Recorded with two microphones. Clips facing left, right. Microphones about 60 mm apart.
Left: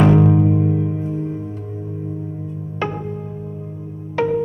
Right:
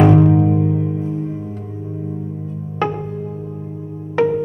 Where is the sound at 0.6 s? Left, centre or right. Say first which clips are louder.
Right 1 dB; centre.